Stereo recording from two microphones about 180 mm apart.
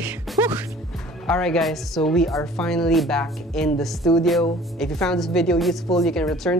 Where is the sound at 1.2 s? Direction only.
5° left (ahead or behind).